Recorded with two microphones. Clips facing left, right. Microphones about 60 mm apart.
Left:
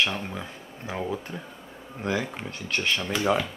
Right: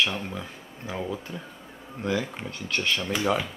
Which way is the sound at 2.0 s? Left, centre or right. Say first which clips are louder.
Even; left.